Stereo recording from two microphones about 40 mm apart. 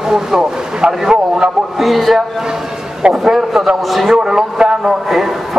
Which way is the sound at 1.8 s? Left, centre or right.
Centre.